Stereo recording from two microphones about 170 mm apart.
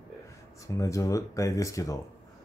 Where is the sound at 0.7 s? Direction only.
20° left (ahead or behind).